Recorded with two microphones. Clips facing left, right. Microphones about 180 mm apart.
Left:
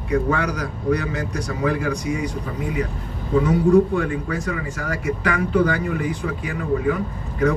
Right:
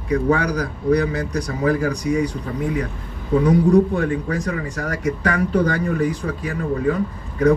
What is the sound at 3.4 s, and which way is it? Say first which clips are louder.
Speech: right 1 dB; 35° right (ahead or behind).